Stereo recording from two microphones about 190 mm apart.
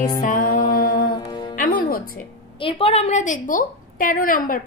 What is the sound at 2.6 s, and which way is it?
A woman's voice, 30° left (ahead or behind).